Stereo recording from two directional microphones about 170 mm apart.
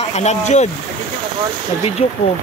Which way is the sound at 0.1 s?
40° left (ahead or behind).